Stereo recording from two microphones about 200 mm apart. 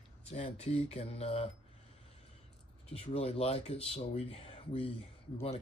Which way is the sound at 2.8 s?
30° left (ahead or behind).